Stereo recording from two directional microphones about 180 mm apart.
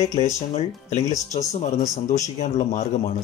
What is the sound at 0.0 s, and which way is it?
Speech, 35° left (ahead or behind).